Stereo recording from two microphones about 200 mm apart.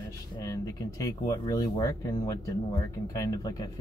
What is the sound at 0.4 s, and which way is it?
Speech, 15° left (ahead or behind).